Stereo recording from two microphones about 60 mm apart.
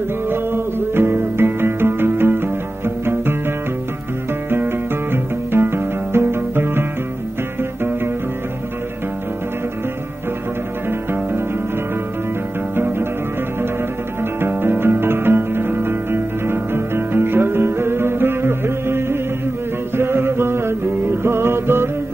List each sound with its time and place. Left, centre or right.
0.3 s music: right
12.7 s music: right
14.4 s music: right